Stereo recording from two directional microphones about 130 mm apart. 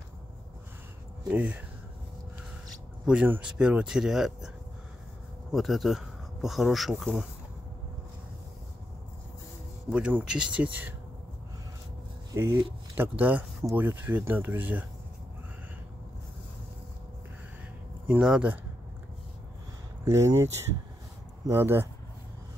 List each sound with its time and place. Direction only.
1.3 s speech: 10° right (ahead or behind)
3.1 s speech: 10° right (ahead or behind)
5.5 s speech: centre (ahead or behind)
9.8 s speech: 10° right (ahead or behind)
12.4 s speech: 20° right (ahead or behind)
18.0 s speech: 5° right (ahead or behind)
20.1 s speech: 20° right (ahead or behind)
21.5 s speech: 20° right (ahead or behind)